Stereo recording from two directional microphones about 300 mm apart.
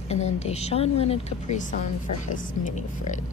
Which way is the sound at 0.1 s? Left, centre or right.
Left.